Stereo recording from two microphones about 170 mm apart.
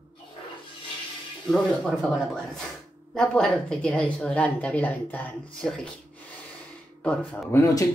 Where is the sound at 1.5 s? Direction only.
Centre (ahead or behind).